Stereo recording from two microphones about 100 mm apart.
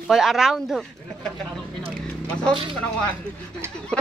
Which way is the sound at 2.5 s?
55° right (ahead or behind).